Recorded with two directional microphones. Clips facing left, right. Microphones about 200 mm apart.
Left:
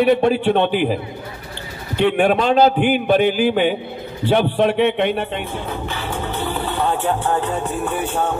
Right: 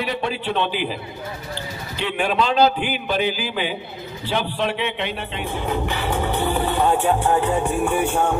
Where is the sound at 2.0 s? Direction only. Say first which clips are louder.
Left 6 dB; 55° left (ahead or behind).